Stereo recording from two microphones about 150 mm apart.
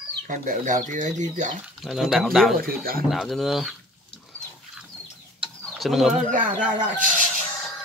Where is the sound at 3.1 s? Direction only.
Centre (ahead or behind).